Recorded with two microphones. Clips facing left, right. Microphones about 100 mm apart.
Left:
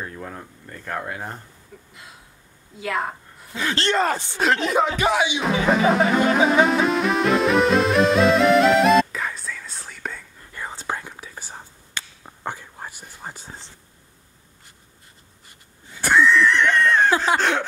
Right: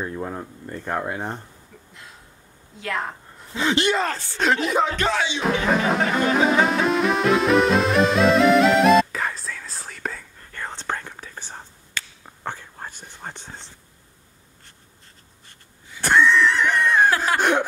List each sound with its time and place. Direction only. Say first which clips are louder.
0.0 s speech: right 5 dB; 20° right (ahead or behind)
2.8 s speech: left 2 dB; 5° left (ahead or behind)
3.5 s speech: right 4 dB; 20° right (ahead or behind)
3.8 s speech: left 6 dB; 5° right (ahead or behind)
4.1 s speech: left 5 dB; 20° left (ahead or behind)
4.4 s speech: even; centre (ahead or behind)
5.0 s music: left 3 dB; 15° left (ahead or behind)
5.4 s music: left 1 dB; centre (ahead or behind)
10.5 s whispering: even; 5° left (ahead or behind)
16.0 s a sound: even; 5° left (ahead or behind); by 17.6 s 15° right (ahead or behind)